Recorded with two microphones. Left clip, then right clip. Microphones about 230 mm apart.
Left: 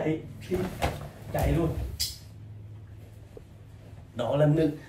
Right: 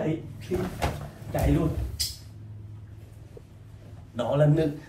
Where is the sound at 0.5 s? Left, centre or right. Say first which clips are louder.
Right 1 dB; centre.